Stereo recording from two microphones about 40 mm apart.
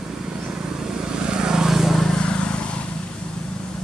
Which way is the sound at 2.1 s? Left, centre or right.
Left.